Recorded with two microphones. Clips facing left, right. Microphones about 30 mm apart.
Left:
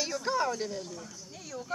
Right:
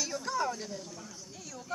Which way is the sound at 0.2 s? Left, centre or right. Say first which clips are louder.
Left 4 dB; left.